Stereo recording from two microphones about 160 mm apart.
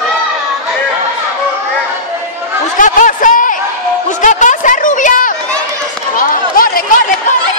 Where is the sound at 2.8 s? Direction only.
55° left (ahead or behind).